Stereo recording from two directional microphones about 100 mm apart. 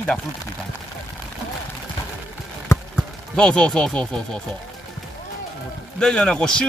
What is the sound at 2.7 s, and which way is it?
Clip-clop, 25° left (ahead or behind).